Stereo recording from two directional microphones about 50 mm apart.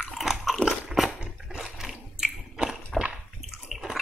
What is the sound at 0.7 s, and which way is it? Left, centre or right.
Chewing, centre.